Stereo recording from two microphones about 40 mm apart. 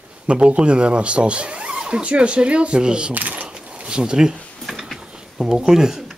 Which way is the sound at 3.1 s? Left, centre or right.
Right.